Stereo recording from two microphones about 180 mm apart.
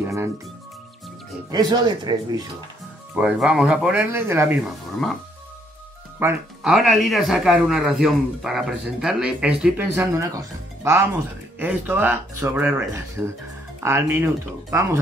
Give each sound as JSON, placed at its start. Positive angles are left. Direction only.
{"t": 0.0, "sound": "music", "side_deg": -15}
{"t": 1.5, "sound": "speech", "side_deg": -25}
{"t": 3.2, "sound": "speech", "side_deg": -5}
{"t": 4.6, "sound": "speech", "side_deg": 0}
{"t": 6.1, "sound": "speech", "side_deg": -5}